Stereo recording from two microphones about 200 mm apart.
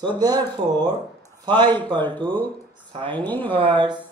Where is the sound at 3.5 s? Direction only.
25° right (ahead or behind).